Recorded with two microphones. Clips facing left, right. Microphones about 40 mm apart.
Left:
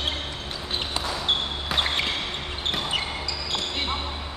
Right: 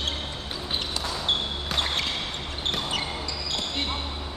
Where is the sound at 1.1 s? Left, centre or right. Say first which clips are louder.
Left 1 dB; centre.